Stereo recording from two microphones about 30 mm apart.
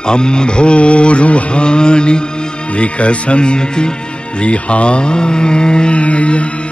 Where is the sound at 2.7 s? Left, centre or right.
Left.